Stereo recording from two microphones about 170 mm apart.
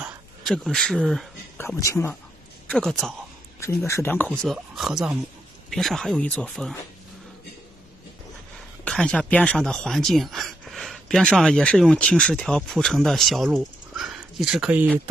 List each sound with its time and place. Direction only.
0.4 s speech: 5° left (ahead or behind)
1.8 s speech: 15° left (ahead or behind)
2.7 s speech: centre (ahead or behind)
3.5 s speech: 15° left (ahead or behind)
8.8 s speech: 5° left (ahead or behind)